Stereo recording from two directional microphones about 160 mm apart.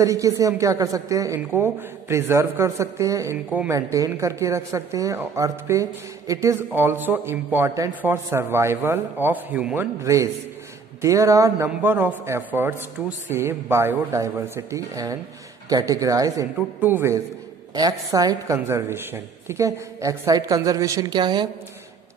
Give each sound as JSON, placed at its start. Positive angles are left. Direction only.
{"t": 0.0, "sound": "a woman's voice", "side_deg": -20}
{"t": 10.0, "sound": "a woman's voice", "side_deg": -20}